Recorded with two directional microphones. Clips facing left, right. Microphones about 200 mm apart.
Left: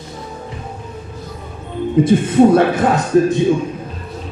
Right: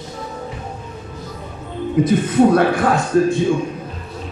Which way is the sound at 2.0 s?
25° left (ahead or behind).